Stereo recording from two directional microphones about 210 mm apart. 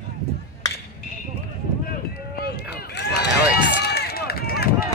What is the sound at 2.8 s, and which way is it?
Run, 55° left (ahead or behind).